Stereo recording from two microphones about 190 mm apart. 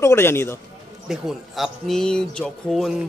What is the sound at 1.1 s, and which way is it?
A man's voice, centre (ahead or behind).